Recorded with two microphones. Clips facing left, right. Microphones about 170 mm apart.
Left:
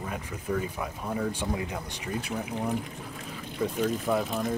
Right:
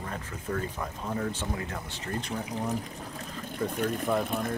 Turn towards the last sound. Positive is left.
turn(degrees=5)  # may be behind; listen again after turning